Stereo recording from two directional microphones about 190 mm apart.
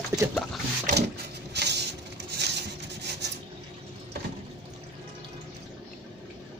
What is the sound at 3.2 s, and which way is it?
Rub, 65° right (ahead or behind).